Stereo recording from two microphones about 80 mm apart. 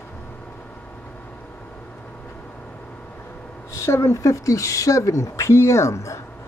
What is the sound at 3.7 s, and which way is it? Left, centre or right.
Speech, left.